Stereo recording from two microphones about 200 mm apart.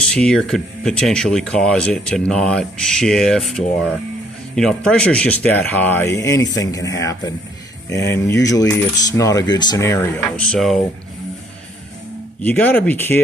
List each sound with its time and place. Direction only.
0.0 s speech: 5° left (ahead or behind)
12.4 s speech: 10° left (ahead or behind)